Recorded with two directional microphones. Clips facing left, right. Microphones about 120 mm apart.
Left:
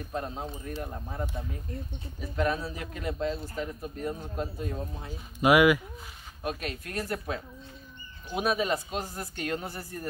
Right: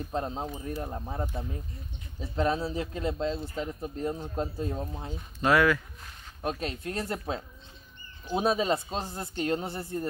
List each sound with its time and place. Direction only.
0.1 s speech: 25° right (ahead or behind)
5.4 s speech: 15° left (ahead or behind)
6.4 s speech: 30° right (ahead or behind)